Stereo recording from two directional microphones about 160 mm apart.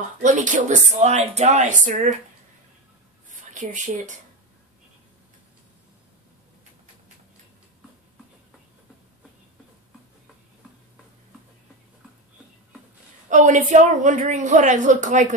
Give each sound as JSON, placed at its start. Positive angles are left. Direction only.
{"t": 0.2, "sound": "speech", "side_deg": -50}
{"t": 3.3, "sound": "a sound", "side_deg": -50}
{"t": 13.3, "sound": "speech", "side_deg": -50}